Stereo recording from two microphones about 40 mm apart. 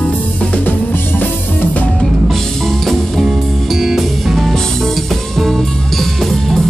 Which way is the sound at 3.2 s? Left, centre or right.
Centre.